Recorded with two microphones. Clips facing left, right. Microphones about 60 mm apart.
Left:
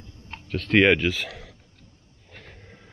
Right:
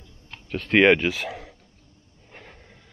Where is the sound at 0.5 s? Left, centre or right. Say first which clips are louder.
Right 1 dB; centre.